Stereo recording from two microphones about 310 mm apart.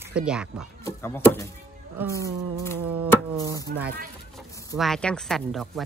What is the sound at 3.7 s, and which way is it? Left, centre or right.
Speech, right.